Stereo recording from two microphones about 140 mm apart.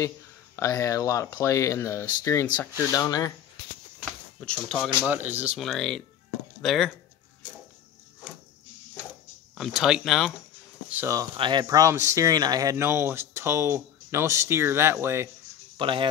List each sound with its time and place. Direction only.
0.6 s speech: 20° left (ahead or behind)
4.4 s speech: 5° left (ahead or behind)
5.1 s speech: 15° right (ahead or behind)
5.6 s speech: centre (ahead or behind)
9.6 s speech: 5° right (ahead or behind)
10.9 s speech: 10° right (ahead or behind)
11.3 s speech: 35° right (ahead or behind); by 15.2 s 20° right (ahead or behind)
15.8 s speech: 35° right (ahead or behind)